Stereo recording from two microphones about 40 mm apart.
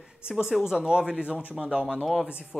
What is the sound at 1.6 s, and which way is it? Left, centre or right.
Speech, centre.